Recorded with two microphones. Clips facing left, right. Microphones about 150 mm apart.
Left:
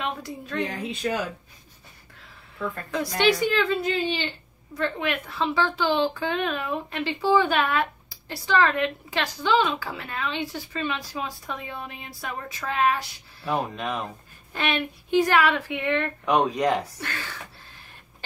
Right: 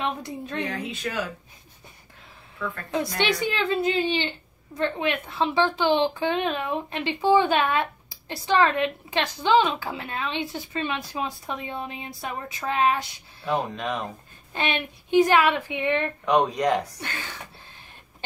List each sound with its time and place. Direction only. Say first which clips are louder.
0.0 s a woman's voice: right 2 dB; 20° right (ahead or behind)
0.8 s speech: left 3 dB; 25° left (ahead or behind)
3.2 s a woman's voice: left 6 dB; 20° right (ahead or behind)
13.5 s speech: right 1 dB; centre (ahead or behind)
14.5 s a woman's voice: left 1 dB; 20° right (ahead or behind)
16.3 s speech: even; 5° left (ahead or behind)